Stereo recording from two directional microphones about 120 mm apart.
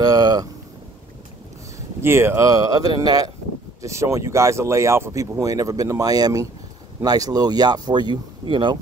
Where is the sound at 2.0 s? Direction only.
20° right (ahead or behind).